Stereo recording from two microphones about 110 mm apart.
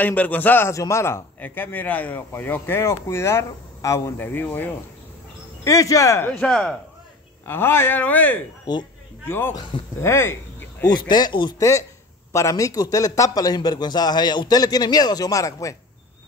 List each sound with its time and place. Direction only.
0.0 s a man's voice: 15° left (ahead or behind)
5.6 s a man's voice: 30° left (ahead or behind)
6.4 s speech: 5° left (ahead or behind)
7.4 s a man's voice: 20° left (ahead or behind)
8.7 s a man's voice: 40° left (ahead or behind)
9.7 s speech: 50° left (ahead or behind)
10.0 s a man's voice: 25° left (ahead or behind)
10.9 s a man's voice: 40° left (ahead or behind)
11.5 s a man's voice: 30° left (ahead or behind)